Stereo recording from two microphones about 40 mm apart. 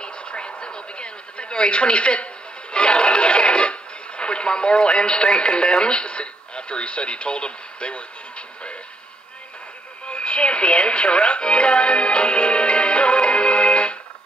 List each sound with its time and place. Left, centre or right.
0.0 s a sound: left
2.7 s music: left
4.2 s speech: left
10.0 s radio: left